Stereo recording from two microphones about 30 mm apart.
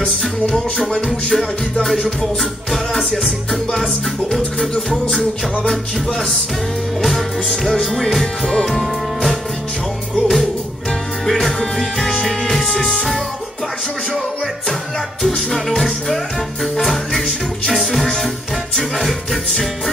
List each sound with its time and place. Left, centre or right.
0.7 s music: centre
4.6 s music: centre
7.0 s music: centre
7.4 s music: centre
11.4 s music: centre
12.3 s music: centre
12.6 s music: centre
16.7 s music: centre